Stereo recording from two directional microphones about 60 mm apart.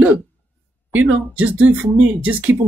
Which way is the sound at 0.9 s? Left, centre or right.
Right.